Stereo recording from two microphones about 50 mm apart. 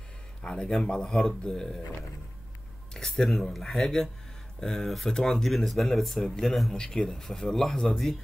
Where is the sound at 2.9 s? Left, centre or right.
Centre.